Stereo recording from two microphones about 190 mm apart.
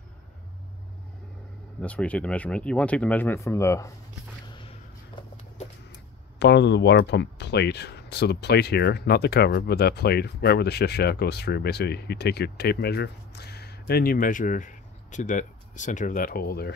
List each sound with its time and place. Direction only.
1.8 s speech: 5° left (ahead or behind)
4.5 s a sound: 25° left (ahead or behind)
6.4 s speech: 65° left (ahead or behind)